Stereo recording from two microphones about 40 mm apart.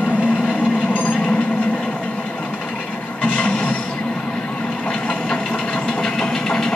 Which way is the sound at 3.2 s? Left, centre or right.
Left.